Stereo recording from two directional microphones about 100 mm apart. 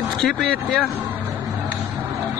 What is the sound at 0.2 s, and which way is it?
Speech, 5° left (ahead or behind).